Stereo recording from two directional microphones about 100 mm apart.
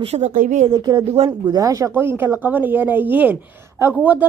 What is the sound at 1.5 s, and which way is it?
Speech, 35° right (ahead or behind).